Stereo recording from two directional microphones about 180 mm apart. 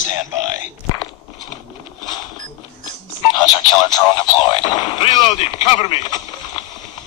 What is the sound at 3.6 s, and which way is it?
Radio, 20° left (ahead or behind).